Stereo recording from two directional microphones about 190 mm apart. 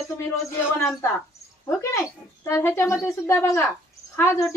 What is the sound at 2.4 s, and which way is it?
A woman's voice, 15° left (ahead or behind).